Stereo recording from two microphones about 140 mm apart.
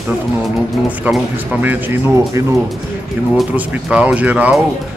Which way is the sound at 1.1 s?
10° right (ahead or behind).